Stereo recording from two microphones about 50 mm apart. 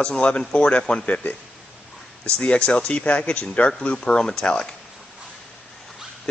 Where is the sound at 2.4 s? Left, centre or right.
Left.